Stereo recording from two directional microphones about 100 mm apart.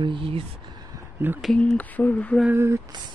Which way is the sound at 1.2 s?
20° right (ahead or behind).